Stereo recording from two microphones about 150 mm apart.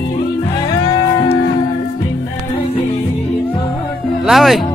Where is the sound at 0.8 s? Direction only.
30° left (ahead or behind).